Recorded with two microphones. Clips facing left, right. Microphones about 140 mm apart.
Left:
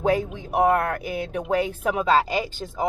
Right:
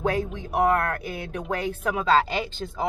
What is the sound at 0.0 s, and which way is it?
Speech, 20° left (ahead or behind).